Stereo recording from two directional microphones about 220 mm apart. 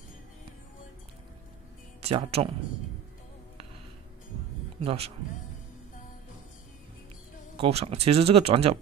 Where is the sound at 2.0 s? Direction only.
30° right (ahead or behind).